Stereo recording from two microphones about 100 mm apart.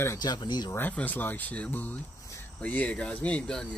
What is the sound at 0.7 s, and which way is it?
Speech, 20° left (ahead or behind).